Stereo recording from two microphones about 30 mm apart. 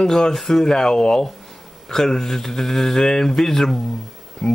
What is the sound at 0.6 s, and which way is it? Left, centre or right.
Speech, centre.